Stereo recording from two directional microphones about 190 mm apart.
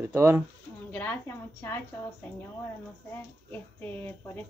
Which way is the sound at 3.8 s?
10° left (ahead or behind).